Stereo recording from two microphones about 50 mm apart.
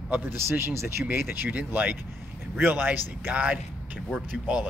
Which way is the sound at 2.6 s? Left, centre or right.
Right.